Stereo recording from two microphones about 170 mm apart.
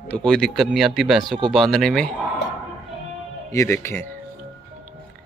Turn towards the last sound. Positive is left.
turn(degrees=15)  # may be behind; listen again after turning